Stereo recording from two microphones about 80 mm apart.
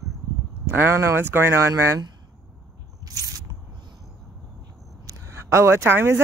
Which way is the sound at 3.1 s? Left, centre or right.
Right.